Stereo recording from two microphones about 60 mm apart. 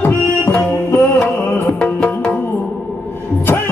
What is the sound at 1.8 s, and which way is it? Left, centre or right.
Music, centre.